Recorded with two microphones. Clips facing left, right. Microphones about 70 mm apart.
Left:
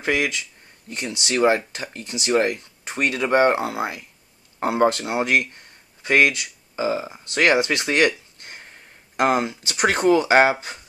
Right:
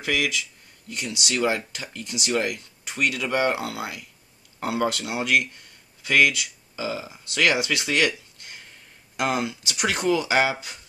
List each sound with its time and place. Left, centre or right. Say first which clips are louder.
0.0 s speech: left 3 dB; left